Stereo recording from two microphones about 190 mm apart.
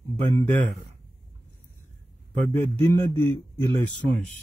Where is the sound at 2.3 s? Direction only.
35° right (ahead or behind).